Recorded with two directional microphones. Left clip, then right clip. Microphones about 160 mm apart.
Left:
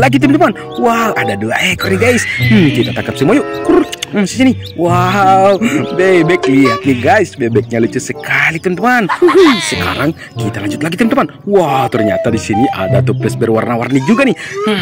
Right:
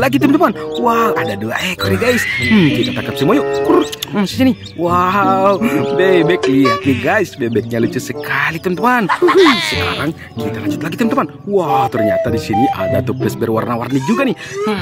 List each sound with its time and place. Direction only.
0.0 s speech: 5° left (ahead or behind)
9.8 s speech: 35° left (ahead or behind)
10.8 s speech: 15° left (ahead or behind)
12.5 s speech: 5° left (ahead or behind)